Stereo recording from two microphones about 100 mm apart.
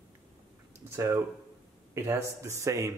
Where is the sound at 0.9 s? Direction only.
30° right (ahead or behind).